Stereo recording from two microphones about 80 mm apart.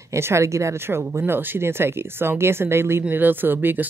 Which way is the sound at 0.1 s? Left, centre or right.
Right.